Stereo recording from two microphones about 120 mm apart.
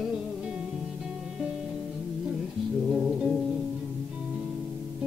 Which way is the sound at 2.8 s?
Centre (ahead or behind).